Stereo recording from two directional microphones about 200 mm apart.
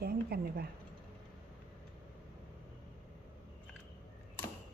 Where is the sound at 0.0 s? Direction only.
50° right (ahead or behind).